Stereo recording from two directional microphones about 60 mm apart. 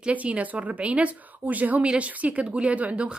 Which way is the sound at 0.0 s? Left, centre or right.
Right.